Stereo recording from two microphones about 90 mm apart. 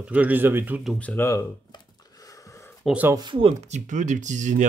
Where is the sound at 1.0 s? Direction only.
20° left (ahead or behind).